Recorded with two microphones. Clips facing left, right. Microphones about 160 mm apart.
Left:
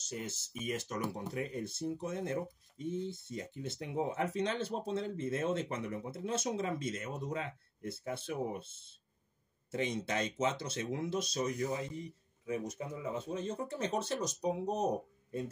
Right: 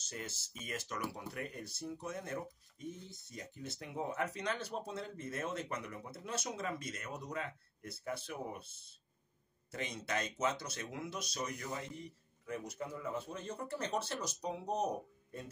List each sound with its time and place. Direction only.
0.1 s speech: 20° left (ahead or behind)
9.7 s speech: 25° left (ahead or behind)